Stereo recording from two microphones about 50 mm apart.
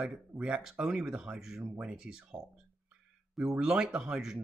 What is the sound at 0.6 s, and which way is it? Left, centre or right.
Speech, centre.